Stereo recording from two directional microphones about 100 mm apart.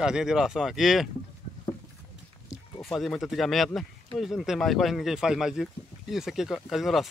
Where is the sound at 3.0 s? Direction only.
Centre (ahead or behind).